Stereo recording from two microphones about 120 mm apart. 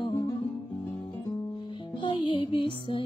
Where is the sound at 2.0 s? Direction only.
45° left (ahead or behind).